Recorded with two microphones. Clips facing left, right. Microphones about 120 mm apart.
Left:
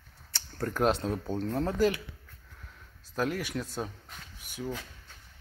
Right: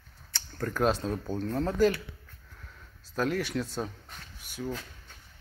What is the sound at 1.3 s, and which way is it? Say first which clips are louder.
Speech: right 1 dB; 20° left (ahead or behind).